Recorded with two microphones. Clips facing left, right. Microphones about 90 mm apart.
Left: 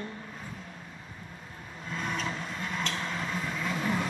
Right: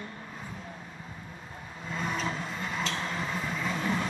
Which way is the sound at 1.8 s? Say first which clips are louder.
Right 1 dB; centre (ahead or behind).